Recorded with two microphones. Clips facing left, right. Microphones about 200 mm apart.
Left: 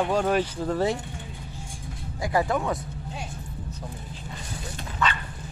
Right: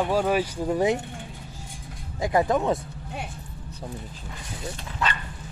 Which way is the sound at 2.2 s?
20° right (ahead or behind).